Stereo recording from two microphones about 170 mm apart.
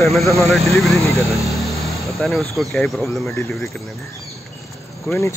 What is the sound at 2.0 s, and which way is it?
Speech, centre (ahead or behind).